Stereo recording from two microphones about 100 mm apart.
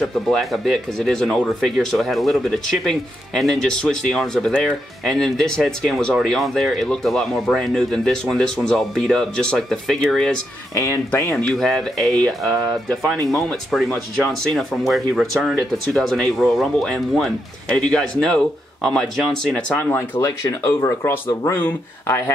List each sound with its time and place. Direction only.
0.0 s speech: centre (ahead or behind)
10.7 s speech: 30° left (ahead or behind)
11.3 s speech: 5° left (ahead or behind)
20.2 s speech: 35° left (ahead or behind)